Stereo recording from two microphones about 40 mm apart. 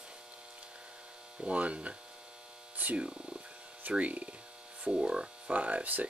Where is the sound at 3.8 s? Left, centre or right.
Right.